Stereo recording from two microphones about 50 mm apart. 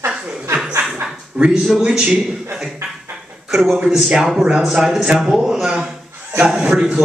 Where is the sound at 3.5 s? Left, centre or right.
Centre.